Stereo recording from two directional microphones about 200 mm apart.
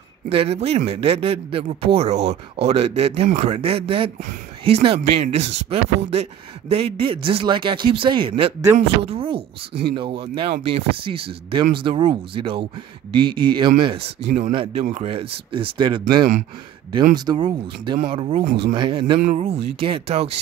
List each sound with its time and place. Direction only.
0.3 s speech: 30° right (ahead or behind)
17.1 s speech: 20° right (ahead or behind)
19.1 s speech: 35° right (ahead or behind)